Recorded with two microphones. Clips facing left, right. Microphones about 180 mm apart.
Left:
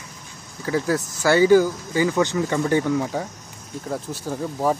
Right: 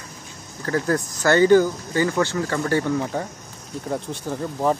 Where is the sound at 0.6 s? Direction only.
10° left (ahead or behind).